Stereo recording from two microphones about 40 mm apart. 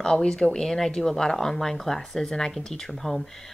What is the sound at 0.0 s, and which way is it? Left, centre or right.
Speech, left.